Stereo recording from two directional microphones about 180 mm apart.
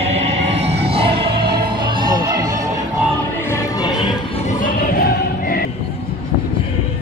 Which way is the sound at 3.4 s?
15° left (ahead or behind).